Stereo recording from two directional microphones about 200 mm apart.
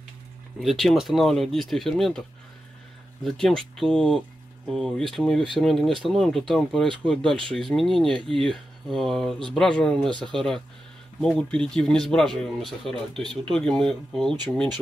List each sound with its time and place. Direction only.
0.6 s speech: centre (ahead or behind)
3.3 s speech: centre (ahead or behind)
9.9 s speech: 25° right (ahead or behind)
10.2 s speech: centre (ahead or behind)